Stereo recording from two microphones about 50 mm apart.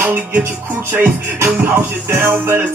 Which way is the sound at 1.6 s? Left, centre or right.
Right.